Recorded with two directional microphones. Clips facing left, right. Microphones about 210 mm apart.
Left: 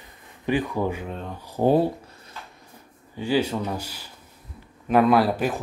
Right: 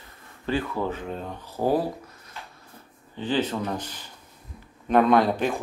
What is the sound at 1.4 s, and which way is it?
Speech, 15° left (ahead or behind).